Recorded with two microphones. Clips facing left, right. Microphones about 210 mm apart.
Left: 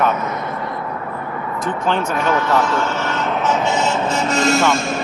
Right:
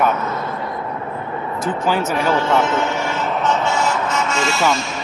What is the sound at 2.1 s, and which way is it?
Speech, 30° right (ahead or behind).